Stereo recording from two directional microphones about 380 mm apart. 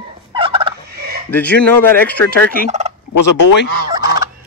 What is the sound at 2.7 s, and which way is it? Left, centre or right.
Fowl, centre.